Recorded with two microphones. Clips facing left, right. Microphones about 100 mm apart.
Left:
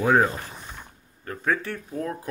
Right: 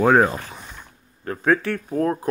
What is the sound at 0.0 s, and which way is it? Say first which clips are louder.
Speech: right 4 dB; 60° right (ahead or behind).